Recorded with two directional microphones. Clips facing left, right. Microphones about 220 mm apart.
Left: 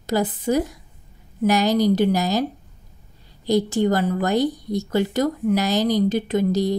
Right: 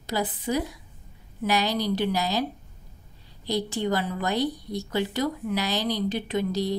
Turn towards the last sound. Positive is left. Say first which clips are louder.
# left 6 dB
turn(degrees=45)  # may be behind; listen again after turning